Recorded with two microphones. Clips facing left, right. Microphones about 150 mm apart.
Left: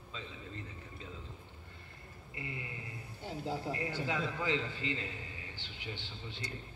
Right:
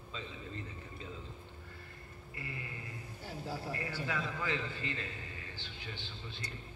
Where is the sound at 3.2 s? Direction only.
20° left (ahead or behind).